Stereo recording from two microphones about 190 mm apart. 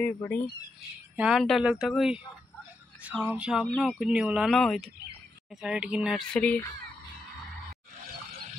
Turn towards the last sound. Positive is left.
turn(degrees=5)  # may be behind; listen again after turning